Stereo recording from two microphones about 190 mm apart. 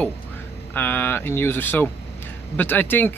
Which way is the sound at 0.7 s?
10° left (ahead or behind).